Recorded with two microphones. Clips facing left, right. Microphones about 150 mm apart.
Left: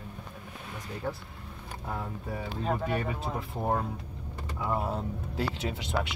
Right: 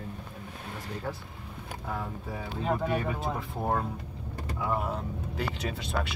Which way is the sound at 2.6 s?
10° right (ahead or behind).